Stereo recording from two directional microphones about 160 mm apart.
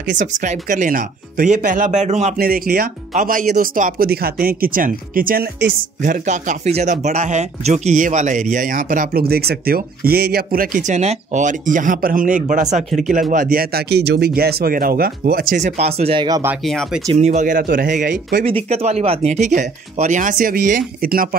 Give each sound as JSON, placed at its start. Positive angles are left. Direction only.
{"t": 0.2, "sound": "speech", "side_deg": -55}
{"t": 2.3, "sound": "speech", "side_deg": -65}
{"t": 3.2, "sound": "speech", "side_deg": -55}
{"t": 6.0, "sound": "speech", "side_deg": -50}
{"t": 13.3, "sound": "speech", "side_deg": -60}
{"t": 15.6, "sound": "speech", "side_deg": -40}
{"t": 16.3, "sound": "speech", "side_deg": -20}
{"t": 16.6, "sound": "speech", "side_deg": 0}
{"t": 17.1, "sound": "speech", "side_deg": -45}
{"t": 18.4, "sound": "speech", "side_deg": -35}